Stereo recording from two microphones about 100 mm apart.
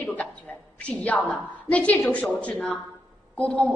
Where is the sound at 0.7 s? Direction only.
10° left (ahead or behind).